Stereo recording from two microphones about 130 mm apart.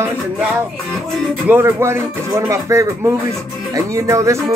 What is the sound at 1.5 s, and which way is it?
Speech, 20° right (ahead or behind).